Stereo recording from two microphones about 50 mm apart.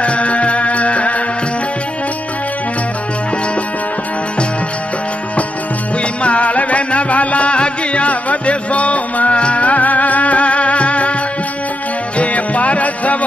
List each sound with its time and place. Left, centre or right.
0.0 s music: left
6.2 s music: left
12.2 s music: left